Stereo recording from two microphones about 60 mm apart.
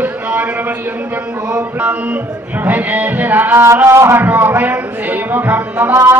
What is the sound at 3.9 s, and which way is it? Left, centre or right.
Speech, right.